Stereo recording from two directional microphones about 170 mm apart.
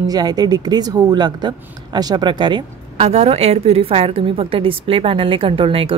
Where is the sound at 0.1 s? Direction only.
25° right (ahead or behind).